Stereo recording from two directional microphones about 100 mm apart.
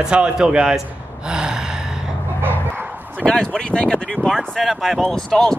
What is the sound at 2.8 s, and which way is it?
Bow-wow, 15° right (ahead or behind).